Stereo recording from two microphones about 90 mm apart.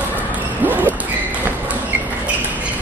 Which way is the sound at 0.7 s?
20° right (ahead or behind).